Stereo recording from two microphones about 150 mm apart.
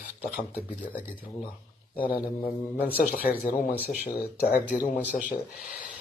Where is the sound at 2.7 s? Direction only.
90° left.